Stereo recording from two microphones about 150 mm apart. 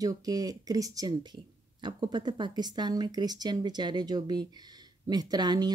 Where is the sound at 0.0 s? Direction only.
25° right (ahead or behind).